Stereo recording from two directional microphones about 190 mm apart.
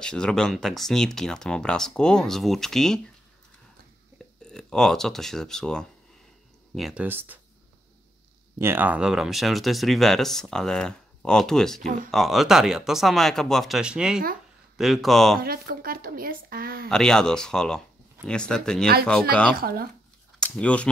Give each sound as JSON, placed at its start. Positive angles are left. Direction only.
{"t": 0.0, "sound": "speech", "side_deg": 5}
{"t": 4.4, "sound": "speech", "side_deg": 5}
{"t": 8.5, "sound": "speech", "side_deg": -10}
{"t": 11.8, "sound": "a woman's voice", "side_deg": -45}
{"t": 12.1, "sound": "speech", "side_deg": 0}
{"t": 15.4, "sound": "a woman's voice", "side_deg": -50}
{"t": 16.9, "sound": "speech", "side_deg": 5}
{"t": 19.5, "sound": "a woman's voice", "side_deg": -50}
{"t": 20.3, "sound": "speech", "side_deg": 5}